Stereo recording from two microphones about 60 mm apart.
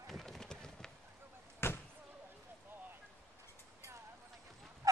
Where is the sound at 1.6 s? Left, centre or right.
Left.